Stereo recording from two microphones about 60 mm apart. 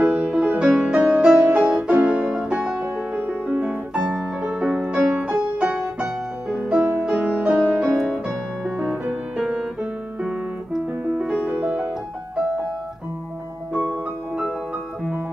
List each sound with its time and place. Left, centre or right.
0.0 s music: right
1.4 s music: right
1.7 s piano: centre
3.2 s music: centre
7.9 s music: centre
11.1 s music: right